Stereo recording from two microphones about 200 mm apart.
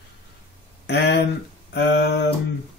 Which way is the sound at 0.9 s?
60° left (ahead or behind).